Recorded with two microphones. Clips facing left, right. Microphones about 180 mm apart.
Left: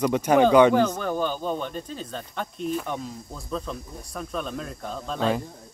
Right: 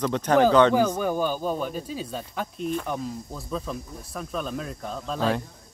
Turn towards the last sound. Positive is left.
turn(degrees=0)  # may be behind; listen again after turning